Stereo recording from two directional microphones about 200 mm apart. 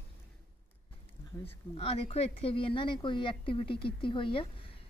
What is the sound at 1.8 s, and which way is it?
Speech, 30° left (ahead or behind).